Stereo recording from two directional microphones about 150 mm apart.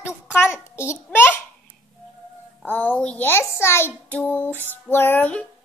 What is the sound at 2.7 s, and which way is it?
A child's voice, 10° left (ahead or behind).